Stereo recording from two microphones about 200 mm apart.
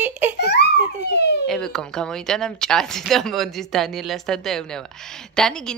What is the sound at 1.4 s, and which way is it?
Speech, centre (ahead or behind).